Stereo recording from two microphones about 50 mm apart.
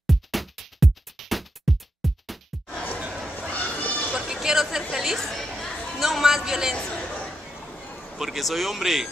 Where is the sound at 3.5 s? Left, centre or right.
Left.